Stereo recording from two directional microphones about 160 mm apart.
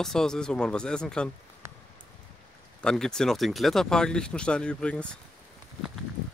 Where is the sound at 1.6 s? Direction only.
15° right (ahead or behind).